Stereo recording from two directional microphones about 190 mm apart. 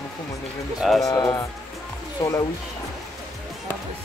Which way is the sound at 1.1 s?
20° left (ahead or behind).